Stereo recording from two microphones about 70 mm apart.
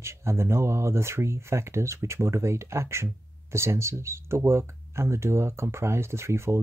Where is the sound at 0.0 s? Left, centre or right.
Right.